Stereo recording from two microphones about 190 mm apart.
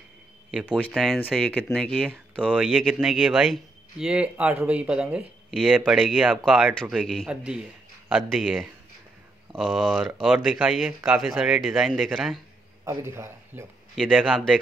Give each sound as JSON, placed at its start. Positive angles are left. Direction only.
{"t": 0.5, "sound": "speech", "side_deg": -5}
{"t": 12.8, "sound": "a man's voice", "side_deg": -15}
{"t": 13.9, "sound": "speech", "side_deg": 0}